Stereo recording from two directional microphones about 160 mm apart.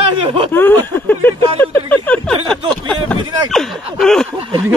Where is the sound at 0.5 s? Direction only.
10° left (ahead or behind).